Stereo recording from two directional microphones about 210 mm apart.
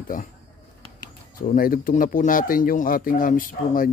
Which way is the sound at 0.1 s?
40° left (ahead or behind).